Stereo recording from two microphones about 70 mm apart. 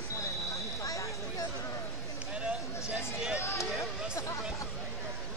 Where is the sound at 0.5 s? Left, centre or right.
Left.